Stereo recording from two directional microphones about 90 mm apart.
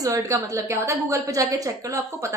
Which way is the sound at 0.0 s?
35° right (ahead or behind).